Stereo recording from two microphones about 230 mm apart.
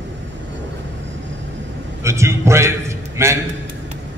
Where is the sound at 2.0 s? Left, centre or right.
Centre.